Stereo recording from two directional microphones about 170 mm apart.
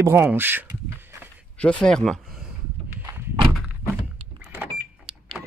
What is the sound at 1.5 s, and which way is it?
Speech, 5° left (ahead or behind).